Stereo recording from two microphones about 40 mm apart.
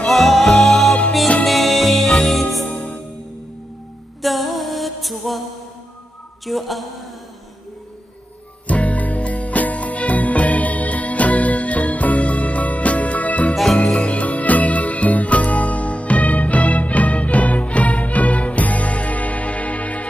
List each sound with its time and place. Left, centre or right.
0.1 s music: centre
2.7 s music: left
4.2 s music: centre
6.4 s a sound: centre
8.6 s music: left